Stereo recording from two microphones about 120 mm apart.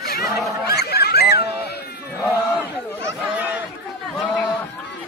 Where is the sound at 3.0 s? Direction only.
20° right (ahead or behind).